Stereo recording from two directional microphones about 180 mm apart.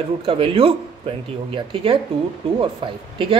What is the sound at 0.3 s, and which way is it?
Speech, 30° right (ahead or behind).